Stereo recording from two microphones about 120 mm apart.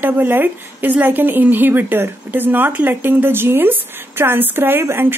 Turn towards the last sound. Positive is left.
turn(degrees=-20)  # may be behind; listen again after turning